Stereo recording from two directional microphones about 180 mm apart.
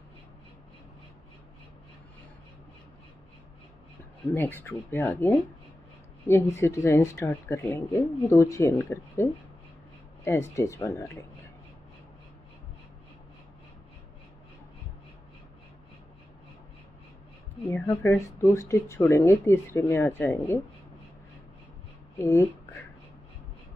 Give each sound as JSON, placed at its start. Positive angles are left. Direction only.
{"t": 4.3, "sound": "speech", "side_deg": 10}
{"t": 17.6, "sound": "speech", "side_deg": 10}
{"t": 22.2, "sound": "speech", "side_deg": 15}